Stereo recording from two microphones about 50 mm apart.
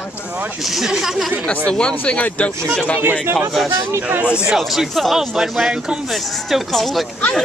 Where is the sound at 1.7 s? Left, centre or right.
Centre.